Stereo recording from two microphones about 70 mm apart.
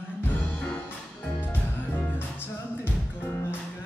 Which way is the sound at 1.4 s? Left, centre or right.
Left.